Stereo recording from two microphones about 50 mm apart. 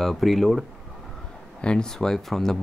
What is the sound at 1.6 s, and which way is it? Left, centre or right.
Speech, centre.